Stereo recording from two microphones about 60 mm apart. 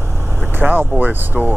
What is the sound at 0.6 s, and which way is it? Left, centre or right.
Speech, right.